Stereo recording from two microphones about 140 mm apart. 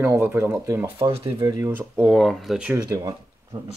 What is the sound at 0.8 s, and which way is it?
Speech, 40° right (ahead or behind).